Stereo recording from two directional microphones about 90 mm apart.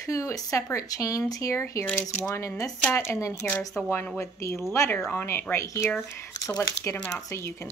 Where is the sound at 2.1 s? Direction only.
25° left (ahead or behind).